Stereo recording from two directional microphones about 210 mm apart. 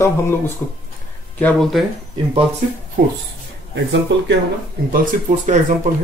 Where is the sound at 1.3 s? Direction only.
5° left (ahead or behind).